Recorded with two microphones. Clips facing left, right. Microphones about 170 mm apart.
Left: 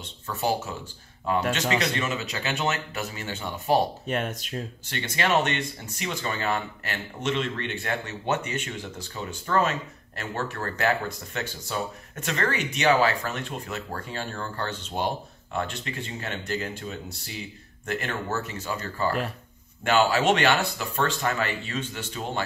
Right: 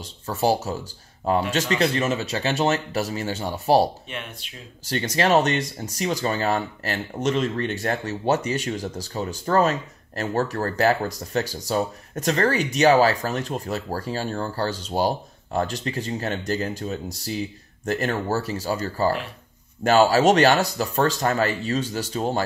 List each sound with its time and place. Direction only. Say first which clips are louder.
0.0 s speech: right 5 dB; 40° right (ahead or behind)
4.1 s speech: left 7 dB; 45° left (ahead or behind)
4.8 s speech: right 7 dB; 40° right (ahead or behind)